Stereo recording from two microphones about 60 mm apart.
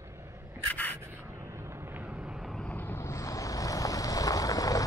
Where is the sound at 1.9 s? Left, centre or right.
Right.